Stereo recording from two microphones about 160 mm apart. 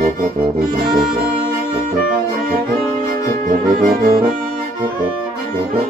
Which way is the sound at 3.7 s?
65° right (ahead or behind).